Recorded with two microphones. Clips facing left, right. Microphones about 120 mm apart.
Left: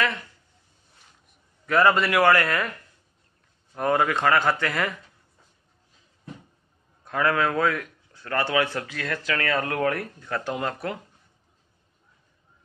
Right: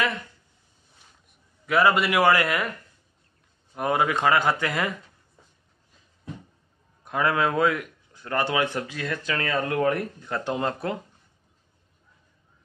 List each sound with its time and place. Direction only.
1.7 s speech: 10° right (ahead or behind)
3.7 s speech: 15° right (ahead or behind)
7.1 s speech: 20° right (ahead or behind)